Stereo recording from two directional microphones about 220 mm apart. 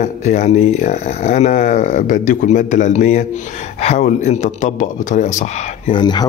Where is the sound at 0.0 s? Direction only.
35° left (ahead or behind).